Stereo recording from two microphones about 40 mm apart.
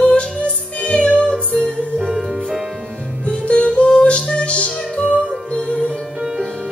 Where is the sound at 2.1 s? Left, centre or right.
Centre.